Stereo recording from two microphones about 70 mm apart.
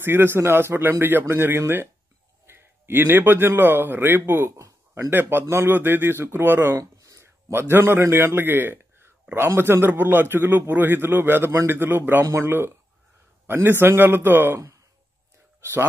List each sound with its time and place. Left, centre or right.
0.0 s a man's voice: right
4.5 s a sound: right
5.1 s a man's voice: right
6.8 s a sound: right
7.5 s a man's voice: right
15.6 s speech: right